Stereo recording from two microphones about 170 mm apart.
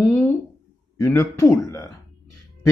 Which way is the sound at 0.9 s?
15° left (ahead or behind).